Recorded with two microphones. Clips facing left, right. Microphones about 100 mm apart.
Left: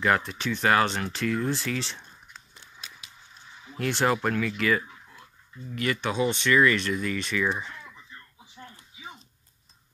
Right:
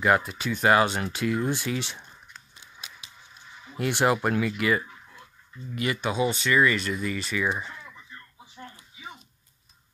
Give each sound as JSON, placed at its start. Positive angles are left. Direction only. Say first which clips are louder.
{"t": 0.0, "sound": "speech", "louder": "right 2 dB", "side_deg": -10}
{"t": 2.6, "sound": "a sound", "louder": "right 1 dB", "side_deg": -20}
{"t": 3.7, "sound": "speech", "louder": "right 1 dB", "side_deg": -10}